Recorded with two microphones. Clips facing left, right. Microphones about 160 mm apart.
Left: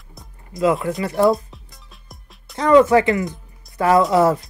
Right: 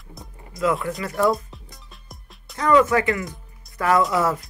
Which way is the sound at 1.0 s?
30° left (ahead or behind).